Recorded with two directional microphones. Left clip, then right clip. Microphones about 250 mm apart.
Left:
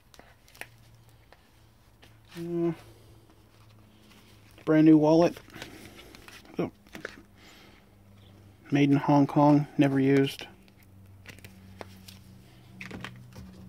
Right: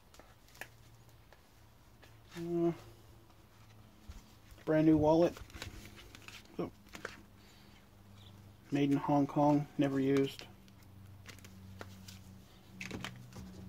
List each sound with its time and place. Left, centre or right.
2.3 s a sound: left
4.6 s speech: left
6.6 s speech: left
8.6 s speech: left